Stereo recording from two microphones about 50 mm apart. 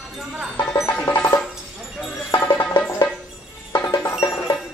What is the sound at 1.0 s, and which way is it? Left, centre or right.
Music, left.